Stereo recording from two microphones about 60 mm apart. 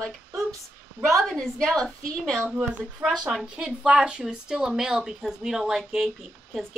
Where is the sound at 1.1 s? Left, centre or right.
Centre.